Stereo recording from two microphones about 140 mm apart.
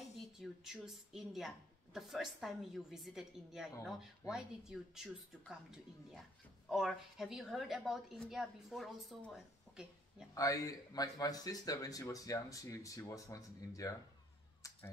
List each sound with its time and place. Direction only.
0.4 s a woman's voice: 5° right (ahead or behind)
6.7 s a woman's voice: centre (ahead or behind)
10.3 s speech: 25° left (ahead or behind)